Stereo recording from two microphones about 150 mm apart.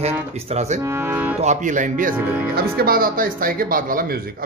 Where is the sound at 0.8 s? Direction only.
15° right (ahead or behind).